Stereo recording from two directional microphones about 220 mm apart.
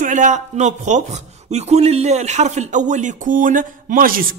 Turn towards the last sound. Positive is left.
turn(degrees=-40)  # may be behind; listen again after turning